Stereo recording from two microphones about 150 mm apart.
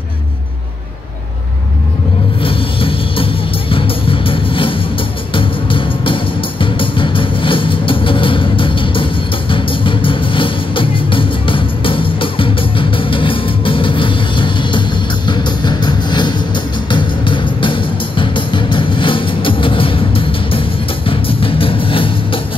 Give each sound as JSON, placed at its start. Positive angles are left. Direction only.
{"t": 2.4, "sound": "music", "side_deg": 35}